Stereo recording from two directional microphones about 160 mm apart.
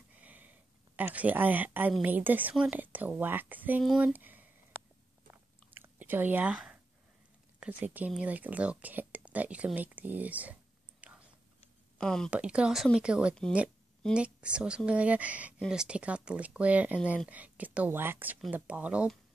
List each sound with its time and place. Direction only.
0.1 s speech: 10° right (ahead or behind)
3.8 s speech: centre (ahead or behind)
5.7 s whispering: 10° right (ahead or behind)
7.6 s speech: 10° right (ahead or behind)
12.0 s speech: 5° left (ahead or behind)
12.3 s speech: 5° right (ahead or behind)